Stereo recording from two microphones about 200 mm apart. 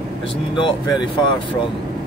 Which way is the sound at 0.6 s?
20° left (ahead or behind).